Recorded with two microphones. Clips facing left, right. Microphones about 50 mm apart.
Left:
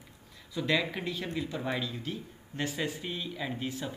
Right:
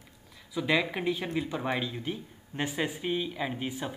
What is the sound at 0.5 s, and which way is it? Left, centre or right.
A man's voice, centre.